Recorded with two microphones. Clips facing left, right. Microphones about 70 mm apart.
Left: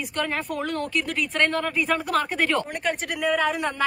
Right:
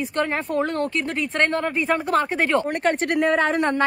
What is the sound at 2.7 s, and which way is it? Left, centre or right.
A woman's voice, right.